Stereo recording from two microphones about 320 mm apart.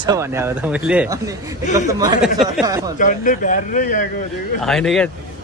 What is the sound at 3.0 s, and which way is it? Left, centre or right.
Speech, left.